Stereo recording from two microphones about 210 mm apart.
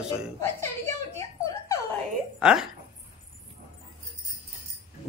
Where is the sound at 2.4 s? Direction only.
5° right (ahead or behind).